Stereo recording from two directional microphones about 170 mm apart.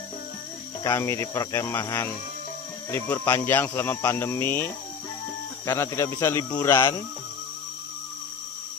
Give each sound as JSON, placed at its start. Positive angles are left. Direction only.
{"t": 0.9, "sound": "speech", "side_deg": 15}